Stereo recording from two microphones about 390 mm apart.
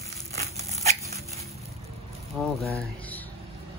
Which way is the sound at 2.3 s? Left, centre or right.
Centre.